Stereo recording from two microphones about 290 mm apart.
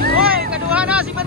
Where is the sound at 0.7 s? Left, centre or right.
Centre.